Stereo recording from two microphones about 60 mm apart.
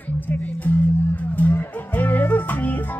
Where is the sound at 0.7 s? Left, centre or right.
Left.